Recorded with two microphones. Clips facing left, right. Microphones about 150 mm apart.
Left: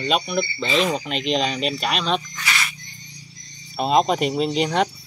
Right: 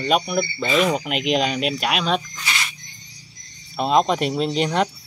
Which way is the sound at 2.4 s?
25° right (ahead or behind).